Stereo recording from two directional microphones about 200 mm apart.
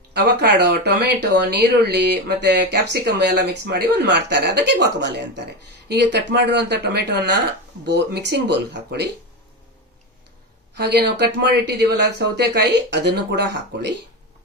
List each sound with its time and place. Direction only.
0.1 s speech: 55° right (ahead or behind)
10.8 s speech: 55° right (ahead or behind)